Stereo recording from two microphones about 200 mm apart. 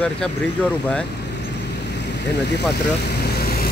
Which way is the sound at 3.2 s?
50° left (ahead or behind).